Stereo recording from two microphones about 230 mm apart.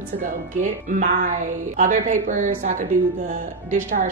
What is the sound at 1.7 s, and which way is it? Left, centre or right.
A woman's voice, right.